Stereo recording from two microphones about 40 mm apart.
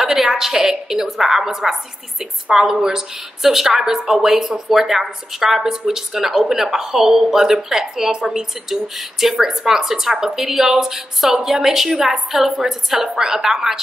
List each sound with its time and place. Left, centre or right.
0.0 s speech: centre